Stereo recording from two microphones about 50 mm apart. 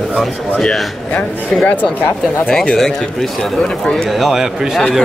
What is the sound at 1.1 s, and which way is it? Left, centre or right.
Speech, left.